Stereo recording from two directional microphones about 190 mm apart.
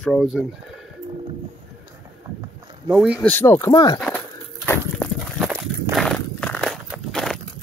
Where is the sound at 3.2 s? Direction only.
10° left (ahead or behind).